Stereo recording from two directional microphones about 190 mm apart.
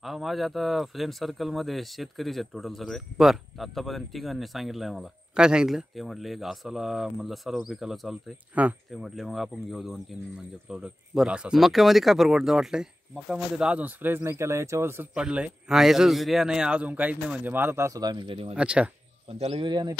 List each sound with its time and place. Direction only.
0.0 s speech: centre (ahead or behind); by 18.5 s 25° right (ahead or behind)
18.5 s speech: 5° right (ahead or behind)
19.3 s speech: 30° right (ahead or behind)